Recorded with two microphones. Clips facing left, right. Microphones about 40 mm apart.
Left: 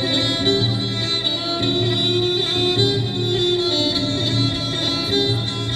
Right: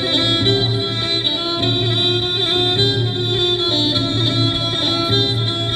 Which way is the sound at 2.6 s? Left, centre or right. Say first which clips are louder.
Even; right.